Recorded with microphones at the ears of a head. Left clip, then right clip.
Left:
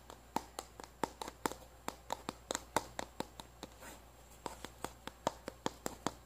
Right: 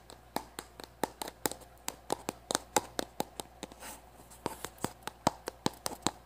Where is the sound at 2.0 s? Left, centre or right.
Right.